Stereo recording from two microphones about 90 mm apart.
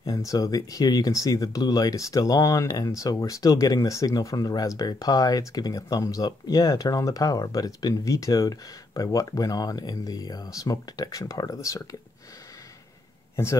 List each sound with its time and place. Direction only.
0.0 s speech: 40° left (ahead or behind)